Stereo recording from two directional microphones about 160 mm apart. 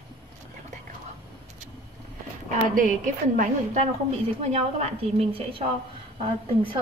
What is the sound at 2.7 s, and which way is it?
A woman's voice, 55° right (ahead or behind).